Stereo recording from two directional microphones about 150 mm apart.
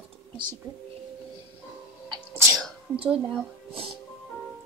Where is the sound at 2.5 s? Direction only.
Centre (ahead or behind).